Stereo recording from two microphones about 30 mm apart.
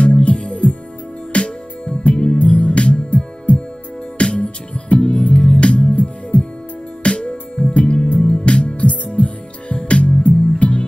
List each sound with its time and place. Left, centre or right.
0.0 s music: left
8.0 s music: left
8.5 s music: left